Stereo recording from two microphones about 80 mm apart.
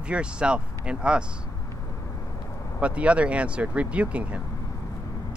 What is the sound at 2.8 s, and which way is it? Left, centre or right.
Speech, centre.